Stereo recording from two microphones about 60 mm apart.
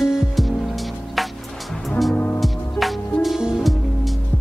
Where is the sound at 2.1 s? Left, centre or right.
Left.